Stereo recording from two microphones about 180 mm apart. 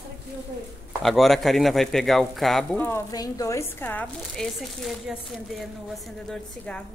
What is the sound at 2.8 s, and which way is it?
Speech, 15° left (ahead or behind).